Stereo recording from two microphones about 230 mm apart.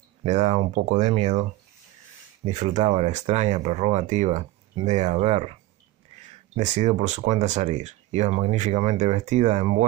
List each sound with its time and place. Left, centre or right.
0.2 s speech: right
2.4 s speech: right
6.5 s speech: right